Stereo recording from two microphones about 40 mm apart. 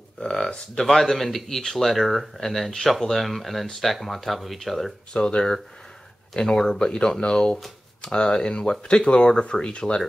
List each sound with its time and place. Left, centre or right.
0.3 s a sound: centre
0.7 s a man's voice: centre
5.1 s a man's voice: left